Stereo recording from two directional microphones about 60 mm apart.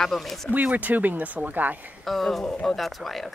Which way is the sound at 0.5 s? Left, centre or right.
Right.